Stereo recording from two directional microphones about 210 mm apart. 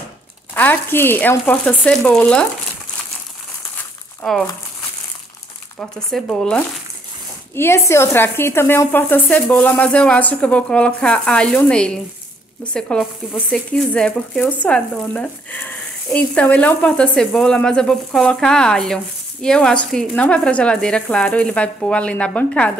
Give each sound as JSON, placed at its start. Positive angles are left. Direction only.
{"t": 0.6, "sound": "speech", "side_deg": 10}
{"t": 4.2, "sound": "speech", "side_deg": 0}
{"t": 5.8, "sound": "speech", "side_deg": 5}